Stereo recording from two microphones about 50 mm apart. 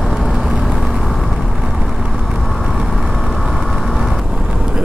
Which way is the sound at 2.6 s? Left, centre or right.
Centre.